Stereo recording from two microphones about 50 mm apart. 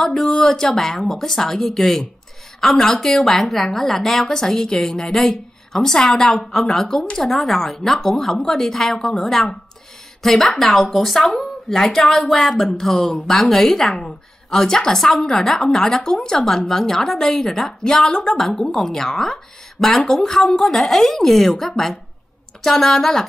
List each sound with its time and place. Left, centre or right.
0.0 s a woman's voice: centre